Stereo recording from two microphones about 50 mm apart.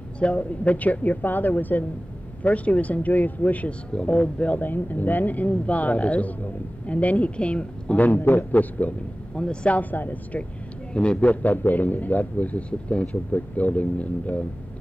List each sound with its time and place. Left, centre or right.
0.2 s a man's voice: left
4.6 s a man's voice: left
9.4 s a man's voice: left
10.9 s a man's voice: left
11.4 s a man's voice: left